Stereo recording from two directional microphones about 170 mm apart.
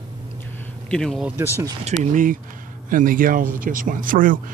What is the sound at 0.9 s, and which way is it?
Speech, 5° left (ahead or behind).